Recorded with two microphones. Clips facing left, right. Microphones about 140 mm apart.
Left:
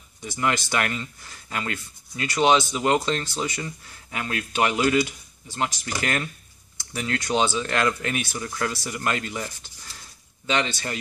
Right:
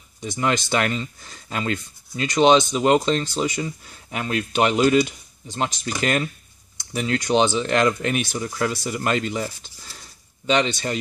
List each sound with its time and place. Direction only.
0.2 s speech: 25° right (ahead or behind)